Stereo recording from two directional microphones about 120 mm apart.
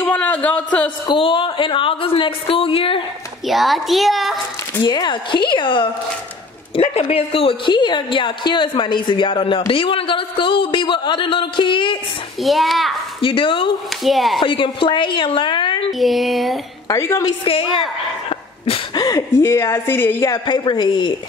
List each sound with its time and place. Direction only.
0.0 s a man's voice: 10° left (ahead or behind)
1.0 s a woman's voice: 45° left (ahead or behind)
3.4 s a child's voice: centre (ahead or behind)
4.8 s a woman's voice: 40° left (ahead or behind)
6.7 s a woman's voice: 60° left (ahead or behind); by 12.0 s 45° left (ahead or behind)
12.4 s a child's voice: centre (ahead or behind)
13.2 s a woman's voice: 45° left (ahead or behind)
14.0 s a child's voice: centre (ahead or behind)
14.4 s speech: 45° left (ahead or behind)
16.0 s a child's voice: centre (ahead or behind)
16.8 s a woman's voice: 30° left (ahead or behind)
18.9 s a woman's voice: 30° left (ahead or behind)
20.2 s a woman's voice: 40° left (ahead or behind)